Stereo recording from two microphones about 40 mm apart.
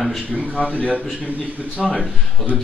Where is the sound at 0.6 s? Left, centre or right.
Left.